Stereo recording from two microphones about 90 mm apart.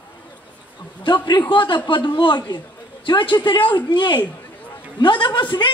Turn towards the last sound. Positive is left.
turn(degrees=60)  # may be behind; listen again after turning